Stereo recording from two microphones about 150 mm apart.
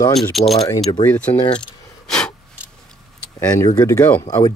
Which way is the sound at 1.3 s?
30° left (ahead or behind).